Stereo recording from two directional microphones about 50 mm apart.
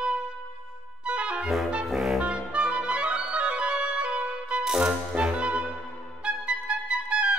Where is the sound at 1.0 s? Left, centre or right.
Right.